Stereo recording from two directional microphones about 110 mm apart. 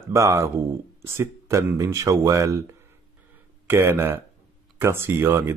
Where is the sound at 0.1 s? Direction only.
30° right (ahead or behind).